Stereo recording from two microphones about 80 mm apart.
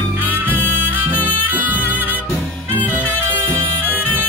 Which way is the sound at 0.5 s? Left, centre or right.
Left.